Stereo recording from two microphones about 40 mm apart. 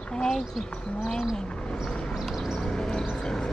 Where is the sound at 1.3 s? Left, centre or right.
Left.